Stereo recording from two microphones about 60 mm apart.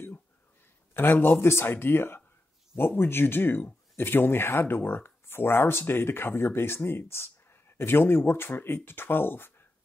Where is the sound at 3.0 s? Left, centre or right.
Left.